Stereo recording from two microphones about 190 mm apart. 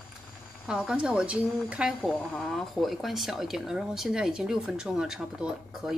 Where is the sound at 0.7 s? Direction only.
5° right (ahead or behind).